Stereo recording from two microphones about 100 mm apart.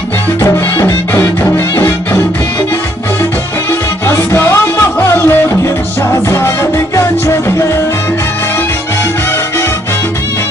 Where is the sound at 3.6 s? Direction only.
25° left (ahead or behind).